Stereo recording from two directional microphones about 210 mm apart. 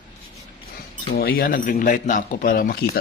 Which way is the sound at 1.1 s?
45° left (ahead or behind).